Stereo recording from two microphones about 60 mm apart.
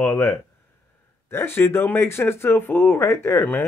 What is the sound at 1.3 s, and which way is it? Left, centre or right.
Speech, left.